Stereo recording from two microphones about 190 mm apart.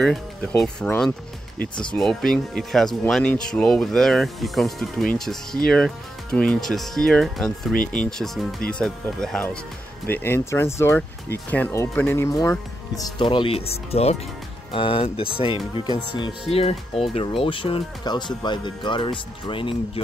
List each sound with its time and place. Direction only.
0.0 s speech: 5° left (ahead or behind); by 19.7 s 25° left (ahead or behind)